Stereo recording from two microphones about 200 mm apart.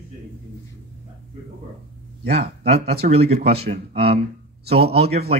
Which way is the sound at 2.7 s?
55° right (ahead or behind).